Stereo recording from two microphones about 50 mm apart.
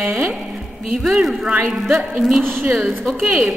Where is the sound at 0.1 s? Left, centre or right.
Right.